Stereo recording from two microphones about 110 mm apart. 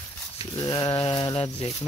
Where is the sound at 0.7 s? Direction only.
40° left (ahead or behind).